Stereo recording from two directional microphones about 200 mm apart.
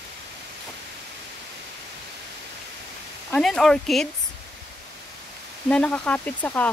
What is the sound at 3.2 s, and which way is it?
Speech, 5° left (ahead or behind).